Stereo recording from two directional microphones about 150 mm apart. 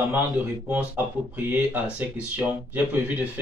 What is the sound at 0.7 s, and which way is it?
Speech, 10° right (ahead or behind).